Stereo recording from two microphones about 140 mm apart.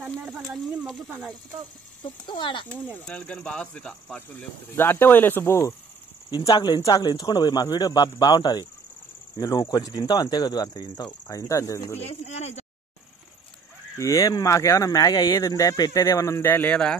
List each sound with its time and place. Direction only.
0.0 s speech: 10° right (ahead or behind)
2.0 s speech: 35° left (ahead or behind)
3.1 s speech: 10° left (ahead or behind)
6.3 s speech: 30° left (ahead or behind)
12.0 s speech: 50° left (ahead or behind)
13.9 s speech: 25° left (ahead or behind)